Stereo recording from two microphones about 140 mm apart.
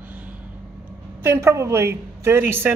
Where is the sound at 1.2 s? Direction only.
20° right (ahead or behind).